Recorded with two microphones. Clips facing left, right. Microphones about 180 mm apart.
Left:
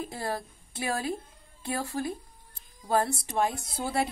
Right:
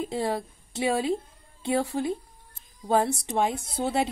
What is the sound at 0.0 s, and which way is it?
A woman's voice, 20° right (ahead or behind).